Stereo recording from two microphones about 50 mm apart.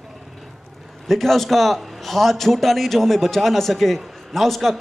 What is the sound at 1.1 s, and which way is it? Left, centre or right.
A man's voice, centre.